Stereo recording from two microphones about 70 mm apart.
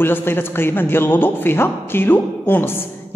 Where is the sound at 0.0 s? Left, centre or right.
Left.